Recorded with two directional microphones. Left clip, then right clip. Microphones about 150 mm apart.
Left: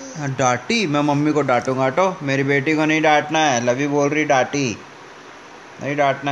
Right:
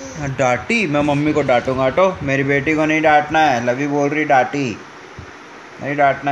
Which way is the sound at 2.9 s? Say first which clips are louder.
Right 4 dB; 25° left (ahead or behind).